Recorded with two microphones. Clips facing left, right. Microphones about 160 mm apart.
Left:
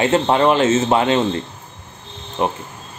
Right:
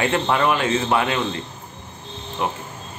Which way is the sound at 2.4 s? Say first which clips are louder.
Left 5 dB; 25° left (ahead or behind).